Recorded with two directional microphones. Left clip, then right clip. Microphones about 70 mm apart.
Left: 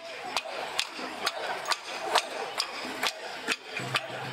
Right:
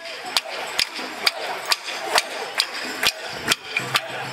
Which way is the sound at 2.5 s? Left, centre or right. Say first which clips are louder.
Right 12 dB; right.